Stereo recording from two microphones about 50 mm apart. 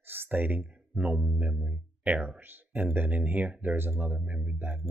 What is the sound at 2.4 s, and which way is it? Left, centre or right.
Speech, right.